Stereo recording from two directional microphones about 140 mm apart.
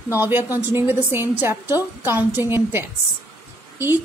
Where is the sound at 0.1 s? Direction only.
15° right (ahead or behind).